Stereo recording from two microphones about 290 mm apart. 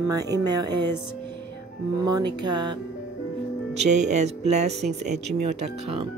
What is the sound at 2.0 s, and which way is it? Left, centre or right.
Music, centre.